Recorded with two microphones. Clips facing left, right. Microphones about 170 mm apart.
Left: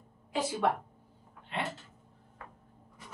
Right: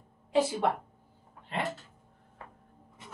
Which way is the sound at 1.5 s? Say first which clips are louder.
Right 2 dB; 40° right (ahead or behind).